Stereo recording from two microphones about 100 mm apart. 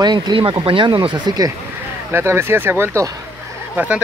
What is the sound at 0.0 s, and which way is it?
Speech, 45° right (ahead or behind).